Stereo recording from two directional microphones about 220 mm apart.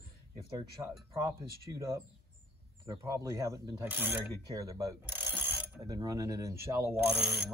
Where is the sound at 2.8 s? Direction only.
15° right (ahead or behind).